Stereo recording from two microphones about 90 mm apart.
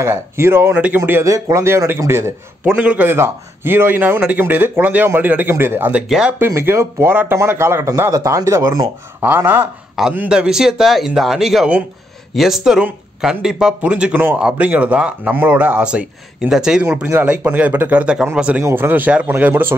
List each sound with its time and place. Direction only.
0.0 s speech: 25° right (ahead or behind)
1.2 s a man's voice: 35° right (ahead or behind)
2.6 s speech: 15° right (ahead or behind)
3.1 s speech: 25° right (ahead or behind)
6.0 s speech: 5° right (ahead or behind)
6.4 s speech: 25° right (ahead or behind)
8.1 s a man's voice: 40° right (ahead or behind)
9.2 s speech: 20° right (ahead or behind)
16.9 s speech: 20° right (ahead or behind)
18.6 s speech: 25° right (ahead or behind)